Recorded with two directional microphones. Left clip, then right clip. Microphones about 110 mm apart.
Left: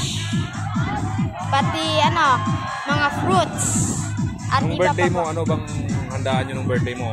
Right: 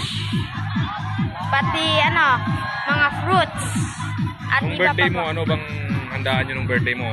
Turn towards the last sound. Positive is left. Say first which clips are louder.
# right 3 dB
turn(degrees=35)  # may be behind; listen again after turning